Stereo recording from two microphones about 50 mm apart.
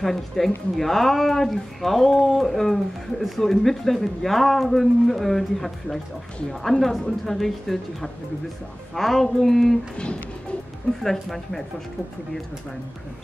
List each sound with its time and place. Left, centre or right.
0.0 s speech: centre
11.0 s speech: centre